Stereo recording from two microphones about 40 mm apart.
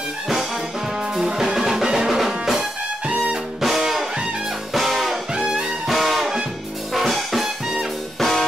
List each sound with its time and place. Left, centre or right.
1.1 s music: centre
5.3 s music: right
5.9 s music: centre